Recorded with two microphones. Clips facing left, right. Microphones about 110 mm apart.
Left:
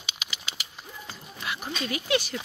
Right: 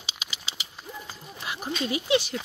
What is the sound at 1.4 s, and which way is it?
Oink, 35° right (ahead or behind).